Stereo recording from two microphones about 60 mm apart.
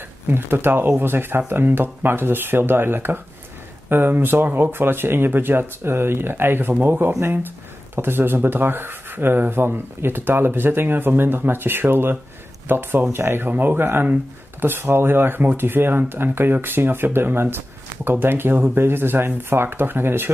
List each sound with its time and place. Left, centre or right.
0.3 s speech: right